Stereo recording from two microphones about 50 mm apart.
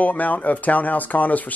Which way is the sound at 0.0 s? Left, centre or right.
Left.